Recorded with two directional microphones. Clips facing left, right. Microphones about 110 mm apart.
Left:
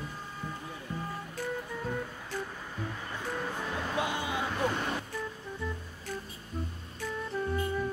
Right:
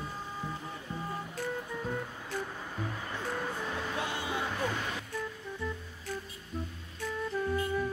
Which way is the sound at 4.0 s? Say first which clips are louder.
Left 5 dB; 15° left (ahead or behind).